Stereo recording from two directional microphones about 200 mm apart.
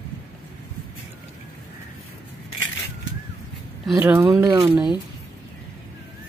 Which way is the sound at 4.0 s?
10° right (ahead or behind).